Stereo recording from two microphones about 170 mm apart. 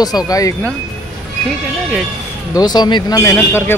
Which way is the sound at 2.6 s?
25° left (ahead or behind).